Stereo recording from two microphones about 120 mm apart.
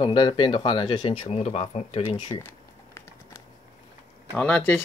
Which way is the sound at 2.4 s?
25° left (ahead or behind).